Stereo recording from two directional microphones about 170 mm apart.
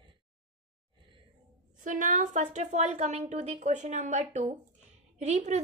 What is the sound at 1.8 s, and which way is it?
A woman's voice, 50° right (ahead or behind).